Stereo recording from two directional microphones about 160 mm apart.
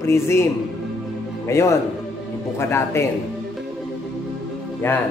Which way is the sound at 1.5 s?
20° left (ahead or behind).